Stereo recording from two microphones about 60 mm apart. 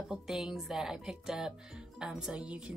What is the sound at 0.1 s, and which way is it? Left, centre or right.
Speech, centre.